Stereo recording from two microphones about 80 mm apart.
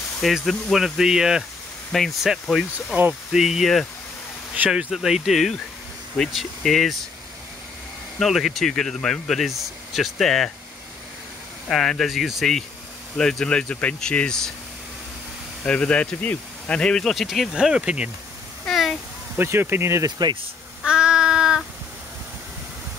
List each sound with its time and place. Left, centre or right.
0.2 s speech: centre
1.9 s speech: centre
8.2 s speech: centre
11.7 s speech: centre
15.6 s speech: centre
18.7 s a sound: centre
19.3 s speech: right
20.8 s child singing: centre